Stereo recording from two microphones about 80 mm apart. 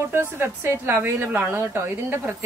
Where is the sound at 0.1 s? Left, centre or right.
Right.